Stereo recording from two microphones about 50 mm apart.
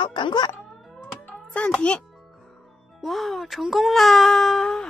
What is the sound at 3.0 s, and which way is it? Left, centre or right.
Speech, centre.